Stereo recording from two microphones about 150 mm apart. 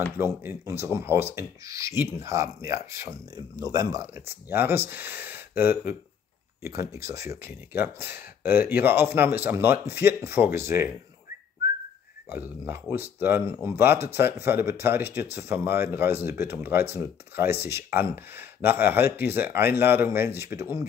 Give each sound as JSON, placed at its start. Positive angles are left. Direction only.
{"t": 0.4, "sound": "speech", "side_deg": -15}
{"t": 12.3, "sound": "speech", "side_deg": -15}